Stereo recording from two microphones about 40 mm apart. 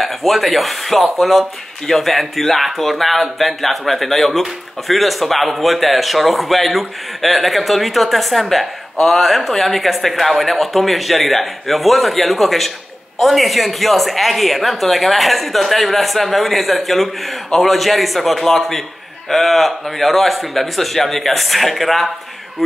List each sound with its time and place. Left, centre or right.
0.0 s speech: centre